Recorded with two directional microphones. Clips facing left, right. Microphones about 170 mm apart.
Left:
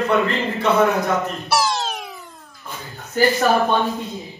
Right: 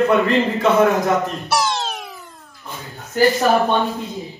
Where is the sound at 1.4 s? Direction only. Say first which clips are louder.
Even; centre (ahead or behind).